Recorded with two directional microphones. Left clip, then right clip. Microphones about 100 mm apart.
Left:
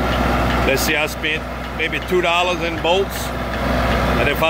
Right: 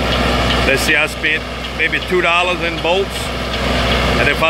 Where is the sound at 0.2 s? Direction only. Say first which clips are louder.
Right 3 dB; 40° right (ahead or behind).